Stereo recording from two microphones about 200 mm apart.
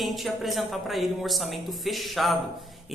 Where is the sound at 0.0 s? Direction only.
Centre (ahead or behind).